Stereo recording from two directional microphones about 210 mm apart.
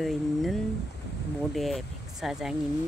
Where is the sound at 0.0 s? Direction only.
Centre (ahead or behind).